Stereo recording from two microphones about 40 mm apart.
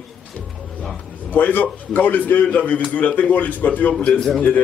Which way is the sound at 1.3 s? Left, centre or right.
Left.